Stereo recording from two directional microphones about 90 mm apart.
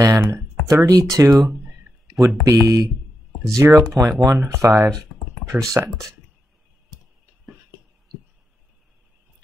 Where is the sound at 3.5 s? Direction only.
35° right (ahead or behind).